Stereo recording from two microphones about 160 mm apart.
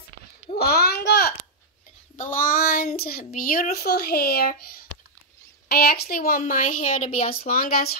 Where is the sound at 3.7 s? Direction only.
80° left; by 7.4 s 50° left (ahead or behind).